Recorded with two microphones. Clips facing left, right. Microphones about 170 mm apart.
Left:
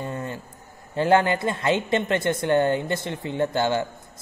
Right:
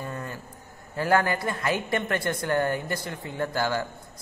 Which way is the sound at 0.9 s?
25° left (ahead or behind).